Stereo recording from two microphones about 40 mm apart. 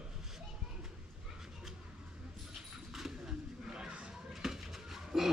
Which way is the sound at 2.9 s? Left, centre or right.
Centre.